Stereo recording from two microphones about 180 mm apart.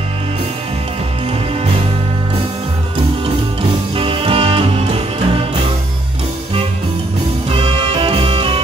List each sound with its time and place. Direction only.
3.9 s music: 30° right (ahead or behind)
7.5 s music: 30° right (ahead or behind)